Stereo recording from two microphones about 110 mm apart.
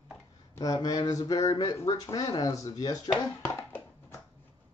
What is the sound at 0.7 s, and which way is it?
Speech, 40° left (ahead or behind).